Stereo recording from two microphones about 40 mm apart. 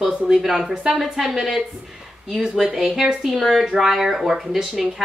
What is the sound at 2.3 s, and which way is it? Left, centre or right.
Speech, centre.